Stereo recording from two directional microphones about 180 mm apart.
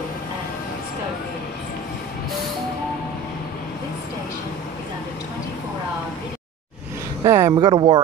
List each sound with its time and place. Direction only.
7.2 s speech: 15° right (ahead or behind)